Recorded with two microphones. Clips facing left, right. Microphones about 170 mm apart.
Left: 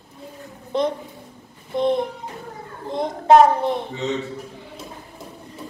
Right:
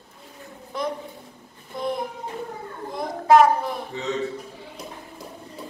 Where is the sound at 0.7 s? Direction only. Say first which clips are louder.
Left 6 dB; 25° left (ahead or behind).